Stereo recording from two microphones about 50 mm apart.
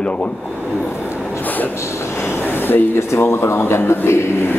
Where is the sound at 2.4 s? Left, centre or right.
Left.